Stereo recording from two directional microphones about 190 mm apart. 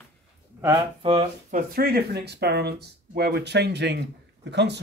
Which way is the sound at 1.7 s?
50° right (ahead or behind).